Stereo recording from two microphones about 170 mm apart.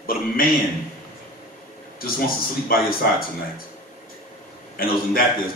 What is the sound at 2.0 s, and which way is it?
Speech, 60° left (ahead or behind).